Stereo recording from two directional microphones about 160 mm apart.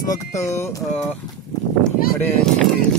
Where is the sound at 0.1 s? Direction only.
20° left (ahead or behind).